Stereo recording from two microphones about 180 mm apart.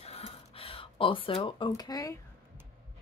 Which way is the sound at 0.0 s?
35° left (ahead or behind).